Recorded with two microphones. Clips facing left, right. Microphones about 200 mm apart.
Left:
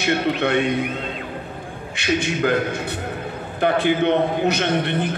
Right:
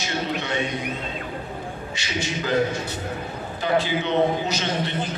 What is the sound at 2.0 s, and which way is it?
Speech, 55° left (ahead or behind).